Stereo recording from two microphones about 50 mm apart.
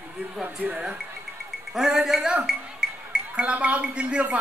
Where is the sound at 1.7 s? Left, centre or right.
Centre.